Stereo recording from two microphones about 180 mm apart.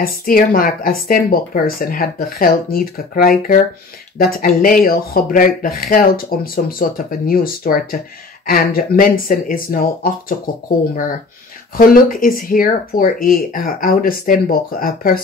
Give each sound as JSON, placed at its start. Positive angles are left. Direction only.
{"t": 0.0, "sound": "speech", "side_deg": 50}
{"t": 11.7, "sound": "speech", "side_deg": 50}